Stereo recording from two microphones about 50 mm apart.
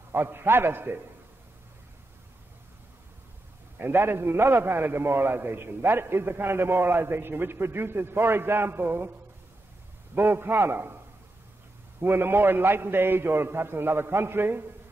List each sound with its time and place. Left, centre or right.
0.1 s a man's voice: right
3.7 s a man's voice: right
10.1 s a man's voice: right
12.0 s a man's voice: right